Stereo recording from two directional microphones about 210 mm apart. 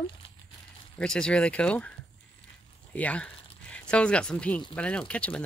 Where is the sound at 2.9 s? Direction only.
5° left (ahead or behind).